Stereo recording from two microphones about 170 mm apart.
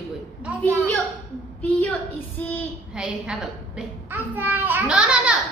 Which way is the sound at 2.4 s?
10° left (ahead or behind).